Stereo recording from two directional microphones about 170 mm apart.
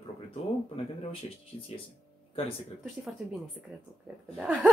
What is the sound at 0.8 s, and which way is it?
Speech, 40° left (ahead or behind).